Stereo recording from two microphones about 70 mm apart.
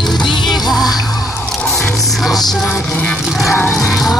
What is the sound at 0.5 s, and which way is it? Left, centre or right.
Music, left.